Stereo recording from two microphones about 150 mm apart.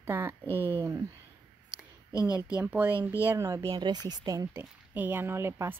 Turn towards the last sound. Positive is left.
turn(degrees=-15)  # may be behind; listen again after turning